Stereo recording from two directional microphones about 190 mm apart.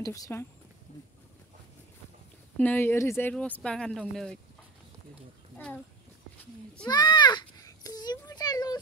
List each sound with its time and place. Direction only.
0.0 s speech: 15° left (ahead or behind)
2.5 s speech: 10° left (ahead or behind)
6.9 s a sound: 25° left (ahead or behind)